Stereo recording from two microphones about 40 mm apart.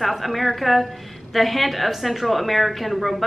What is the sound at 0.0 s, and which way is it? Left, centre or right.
A woman's voice, centre.